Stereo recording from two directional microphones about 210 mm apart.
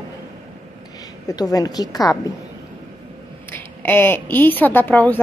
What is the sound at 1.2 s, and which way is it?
Speech, 15° left (ahead or behind).